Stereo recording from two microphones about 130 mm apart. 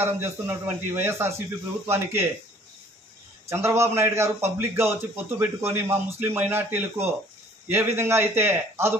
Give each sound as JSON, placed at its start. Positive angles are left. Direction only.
{"t": 0.0, "sound": "a man's voice", "side_deg": -20}
{"t": 3.4, "sound": "a man's voice", "side_deg": -20}